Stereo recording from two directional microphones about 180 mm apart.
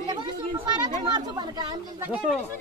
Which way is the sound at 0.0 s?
25° right (ahead or behind).